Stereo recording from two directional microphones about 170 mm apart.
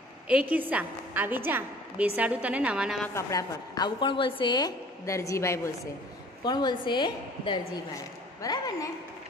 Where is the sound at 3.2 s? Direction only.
20° left (ahead or behind).